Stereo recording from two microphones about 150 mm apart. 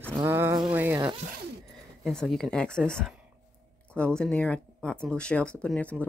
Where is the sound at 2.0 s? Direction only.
5° left (ahead or behind).